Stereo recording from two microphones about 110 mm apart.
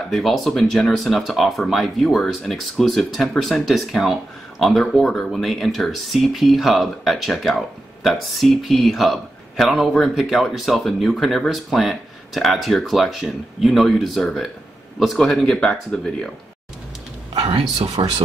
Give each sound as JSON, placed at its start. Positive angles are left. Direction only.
{"t": 0.1, "sound": "speech", "side_deg": 0}
{"t": 17.3, "sound": "a sound", "side_deg": -55}
{"t": 18.0, "sound": "speech", "side_deg": -55}